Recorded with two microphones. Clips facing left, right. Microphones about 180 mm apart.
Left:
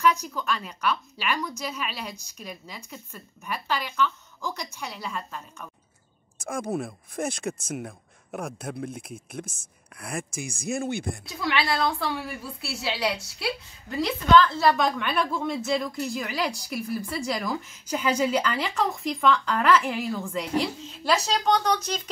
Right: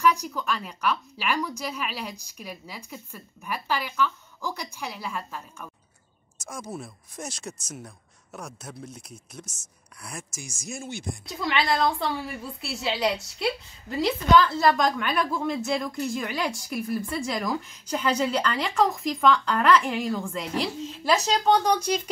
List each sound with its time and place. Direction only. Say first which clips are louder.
0.0 s speech: even; 10° right (ahead or behind)
6.3 s speech: left 7 dB; 55° left (ahead or behind)
11.2 s a woman's voice: right 2 dB; centre (ahead or behind)